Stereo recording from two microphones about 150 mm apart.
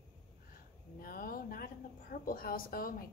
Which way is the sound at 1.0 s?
70° left (ahead or behind).